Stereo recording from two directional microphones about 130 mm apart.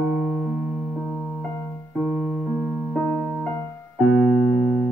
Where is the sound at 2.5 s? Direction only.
15° right (ahead or behind).